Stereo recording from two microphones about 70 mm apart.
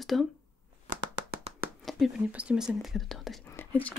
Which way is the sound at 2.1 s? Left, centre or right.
Centre.